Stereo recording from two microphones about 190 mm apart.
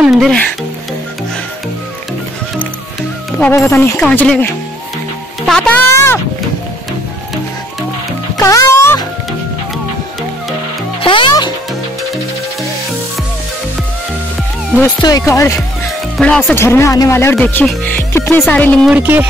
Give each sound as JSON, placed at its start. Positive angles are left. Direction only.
{"t": 0.0, "sound": "speech", "side_deg": 0}
{"t": 3.3, "sound": "speech", "side_deg": 10}
{"t": 5.5, "sound": "speech", "side_deg": 10}
{"t": 8.4, "sound": "music", "side_deg": 15}
{"t": 11.0, "sound": "music", "side_deg": 25}
{"t": 15.0, "sound": "speech", "side_deg": 20}
{"t": 16.2, "sound": "speech", "side_deg": 5}
{"t": 18.9, "sound": "speech", "side_deg": -10}